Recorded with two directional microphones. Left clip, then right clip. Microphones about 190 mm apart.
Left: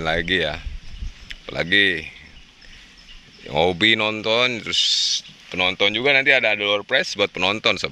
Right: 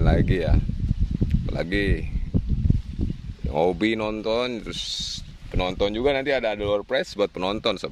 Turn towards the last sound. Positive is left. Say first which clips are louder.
# left 5 dB
turn(degrees=-10)  # may be behind; listen again after turning